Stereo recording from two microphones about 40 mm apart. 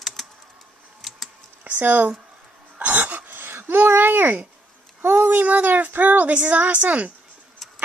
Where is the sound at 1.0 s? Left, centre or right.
Centre.